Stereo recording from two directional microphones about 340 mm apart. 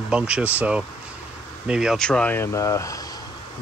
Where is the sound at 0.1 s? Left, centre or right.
Centre.